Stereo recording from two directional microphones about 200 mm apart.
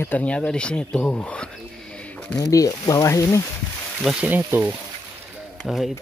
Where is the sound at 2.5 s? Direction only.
15° left (ahead or behind).